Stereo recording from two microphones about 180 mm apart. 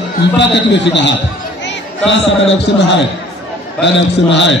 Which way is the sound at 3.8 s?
85° left.